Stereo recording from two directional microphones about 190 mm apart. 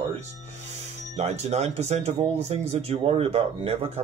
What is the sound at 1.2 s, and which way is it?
Speech, 35° right (ahead or behind).